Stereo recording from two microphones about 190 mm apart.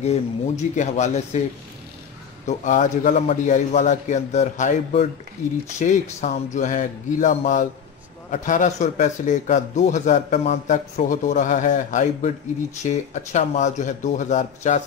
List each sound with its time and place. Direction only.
0.0 s speech: 35° left (ahead or behind)
2.4 s speech: 40° left (ahead or behind)